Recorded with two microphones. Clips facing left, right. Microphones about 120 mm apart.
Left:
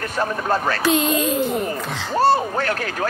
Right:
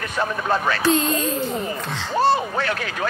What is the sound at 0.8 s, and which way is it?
Speech, 15° left (ahead or behind).